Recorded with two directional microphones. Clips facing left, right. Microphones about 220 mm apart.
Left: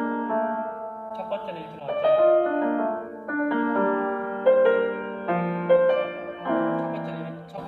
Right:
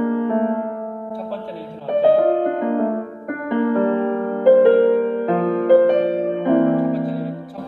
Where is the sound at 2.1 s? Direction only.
20° right (ahead or behind).